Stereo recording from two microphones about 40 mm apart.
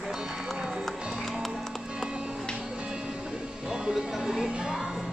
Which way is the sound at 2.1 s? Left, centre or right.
Right.